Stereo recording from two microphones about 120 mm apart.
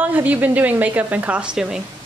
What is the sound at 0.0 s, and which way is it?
A man's voice, 15° right (ahead or behind).